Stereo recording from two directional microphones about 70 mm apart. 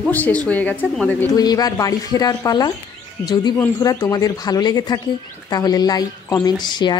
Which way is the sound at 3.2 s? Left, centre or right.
Left.